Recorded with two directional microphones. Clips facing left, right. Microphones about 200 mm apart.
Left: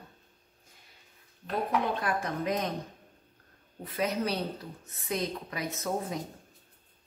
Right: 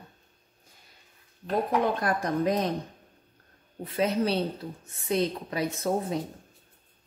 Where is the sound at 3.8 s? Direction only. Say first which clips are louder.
Right 4 dB; 30° right (ahead or behind).